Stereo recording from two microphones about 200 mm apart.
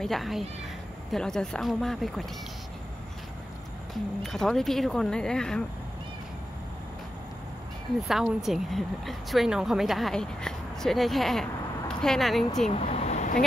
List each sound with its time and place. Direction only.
0.0 s a woman's voice: centre (ahead or behind)
4.2 s a woman's voice: centre (ahead or behind)
8.1 s a woman's voice: centre (ahead or behind)
12.7 s vehicle: 30° left (ahead or behind)